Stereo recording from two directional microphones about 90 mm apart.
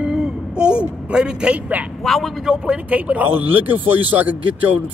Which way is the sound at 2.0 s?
Centre (ahead or behind).